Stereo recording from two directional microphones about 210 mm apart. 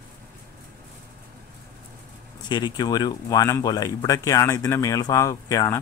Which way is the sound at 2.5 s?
20° left (ahead or behind).